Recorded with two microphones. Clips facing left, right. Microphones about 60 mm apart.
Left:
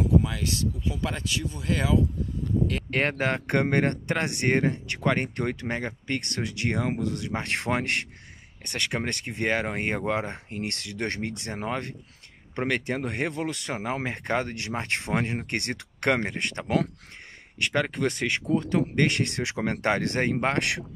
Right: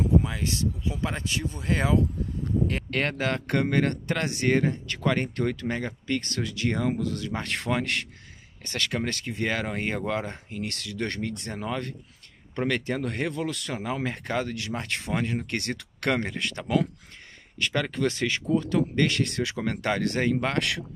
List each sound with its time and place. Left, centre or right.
0.2 s speech: right
2.9 s speech: left